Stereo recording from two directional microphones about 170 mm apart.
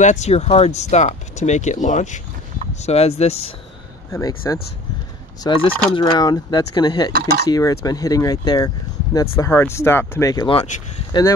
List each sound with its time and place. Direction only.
0.0 s speech: 45° left (ahead or behind)
4.4 s speech: 20° left (ahead or behind)
5.4 s speech: 30° left (ahead or behind)
7.1 s speech: 65° right (ahead or behind)
7.5 s speech: 20° left (ahead or behind)